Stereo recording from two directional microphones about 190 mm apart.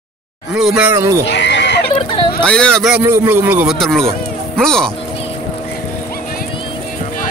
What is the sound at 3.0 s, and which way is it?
Speech, 10° right (ahead or behind).